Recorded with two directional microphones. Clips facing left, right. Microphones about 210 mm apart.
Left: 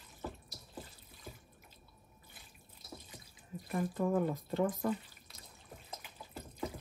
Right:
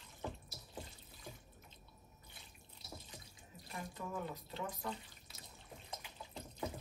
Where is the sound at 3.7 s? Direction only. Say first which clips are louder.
Left 13 dB; 50° left (ahead or behind).